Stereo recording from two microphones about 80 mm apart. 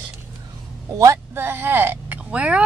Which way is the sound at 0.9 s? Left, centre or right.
Right.